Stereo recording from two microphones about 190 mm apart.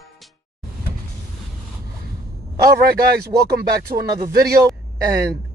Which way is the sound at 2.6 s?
55° right (ahead or behind).